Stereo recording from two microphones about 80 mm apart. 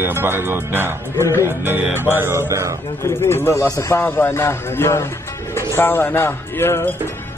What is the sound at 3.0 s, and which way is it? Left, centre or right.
A man's voice, left.